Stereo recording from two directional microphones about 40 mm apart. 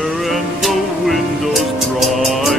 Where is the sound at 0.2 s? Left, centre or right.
Centre.